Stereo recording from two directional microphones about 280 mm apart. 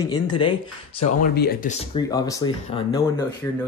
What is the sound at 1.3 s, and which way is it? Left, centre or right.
Speech, left.